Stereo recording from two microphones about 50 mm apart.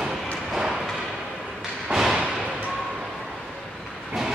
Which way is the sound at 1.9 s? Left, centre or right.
Centre.